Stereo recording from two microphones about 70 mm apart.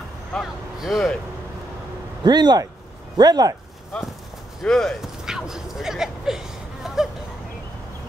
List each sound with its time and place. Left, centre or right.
0.3 s speech: centre
2.2 s speech: right
3.2 s speech: right
4.6 s speech: centre
5.0 s a sound: centre